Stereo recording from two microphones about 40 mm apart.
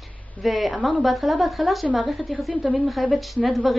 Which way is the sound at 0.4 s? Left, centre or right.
Centre.